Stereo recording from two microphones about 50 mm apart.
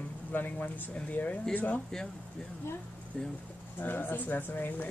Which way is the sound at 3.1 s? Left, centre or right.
Centre.